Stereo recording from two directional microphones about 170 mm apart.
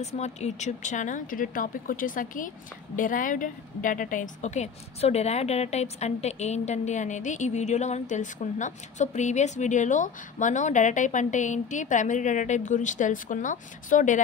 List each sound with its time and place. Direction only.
0.0 s a woman's voice: 40° left (ahead or behind)